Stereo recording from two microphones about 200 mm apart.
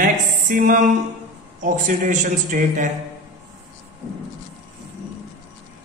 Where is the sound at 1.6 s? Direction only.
40° right (ahead or behind).